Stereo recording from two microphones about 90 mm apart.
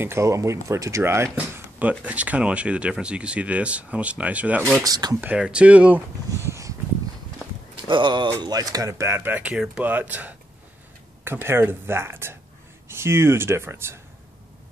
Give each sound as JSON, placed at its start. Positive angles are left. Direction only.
{"t": 0.0, "sound": "speech", "side_deg": -30}
{"t": 1.3, "sound": "speech", "side_deg": -15}
{"t": 4.8, "sound": "speech", "side_deg": -50}
{"t": 5.2, "sound": "speech", "side_deg": -15}
{"t": 6.3, "sound": "a sound", "side_deg": -35}
{"t": 7.7, "sound": "speech", "side_deg": -60}